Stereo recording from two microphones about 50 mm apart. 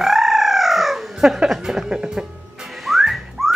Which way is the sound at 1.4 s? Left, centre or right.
Centre.